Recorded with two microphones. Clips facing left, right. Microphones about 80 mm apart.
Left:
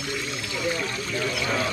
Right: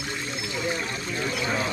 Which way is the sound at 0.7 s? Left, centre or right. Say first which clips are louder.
Left 1 dB; centre.